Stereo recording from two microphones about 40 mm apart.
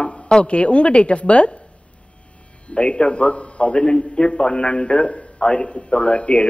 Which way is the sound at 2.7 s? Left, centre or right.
Left.